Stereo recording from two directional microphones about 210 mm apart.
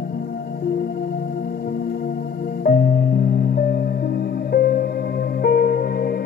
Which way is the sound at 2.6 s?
50° left (ahead or behind).